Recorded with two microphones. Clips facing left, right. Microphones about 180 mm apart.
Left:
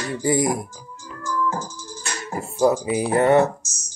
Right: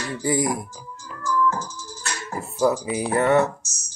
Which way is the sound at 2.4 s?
30° left (ahead or behind).